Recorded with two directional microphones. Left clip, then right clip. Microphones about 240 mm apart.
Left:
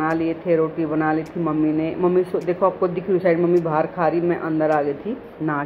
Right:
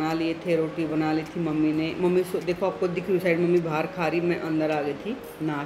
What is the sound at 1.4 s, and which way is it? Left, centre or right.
Speech, centre.